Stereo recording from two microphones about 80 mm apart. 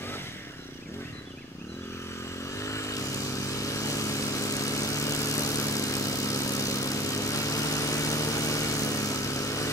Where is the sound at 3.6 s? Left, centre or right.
Left.